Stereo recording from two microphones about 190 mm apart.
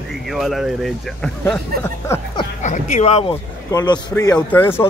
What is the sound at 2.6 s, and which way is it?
Speech, 40° left (ahead or behind).